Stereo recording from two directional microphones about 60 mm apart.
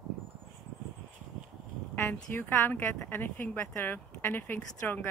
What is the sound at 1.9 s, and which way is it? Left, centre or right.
Speech, left.